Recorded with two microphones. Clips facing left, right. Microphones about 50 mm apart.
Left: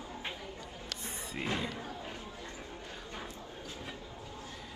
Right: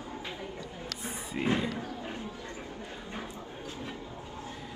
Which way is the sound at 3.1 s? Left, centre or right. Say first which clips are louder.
Right 4 dB; right.